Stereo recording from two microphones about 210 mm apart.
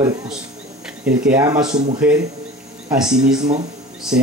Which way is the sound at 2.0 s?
5° right (ahead or behind).